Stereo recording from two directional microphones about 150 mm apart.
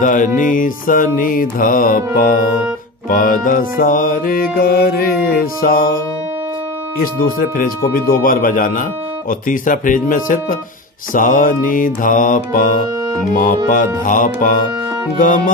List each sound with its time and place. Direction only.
0.0 s mantra: 55° left (ahead or behind)
0.4 s music: 60° left (ahead or behind)
7.0 s music: 75° left (ahead or behind)
9.3 s mantra: 65° left (ahead or behind)